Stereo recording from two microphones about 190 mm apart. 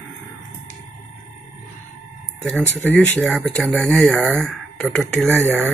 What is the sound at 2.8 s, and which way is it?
Speech, 5° left (ahead or behind).